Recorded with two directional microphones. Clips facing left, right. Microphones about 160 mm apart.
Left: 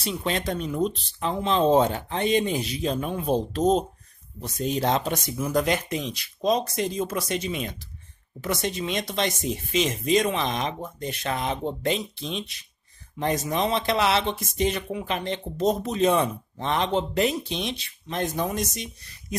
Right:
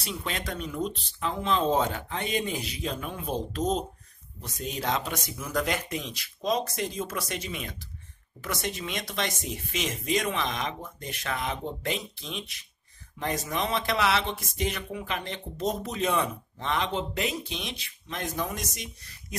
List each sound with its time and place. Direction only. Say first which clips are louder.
0.0 s speech: left 7 dB; 25° left (ahead or behind)